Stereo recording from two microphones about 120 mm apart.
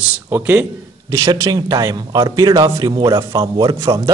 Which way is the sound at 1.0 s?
30° right (ahead or behind).